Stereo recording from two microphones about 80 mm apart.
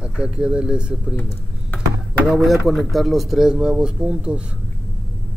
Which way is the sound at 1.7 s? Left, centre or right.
Left.